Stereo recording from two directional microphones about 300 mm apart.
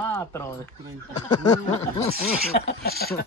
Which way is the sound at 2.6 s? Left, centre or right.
Left.